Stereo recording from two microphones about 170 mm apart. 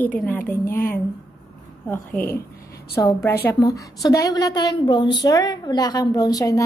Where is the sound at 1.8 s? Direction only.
15° left (ahead or behind).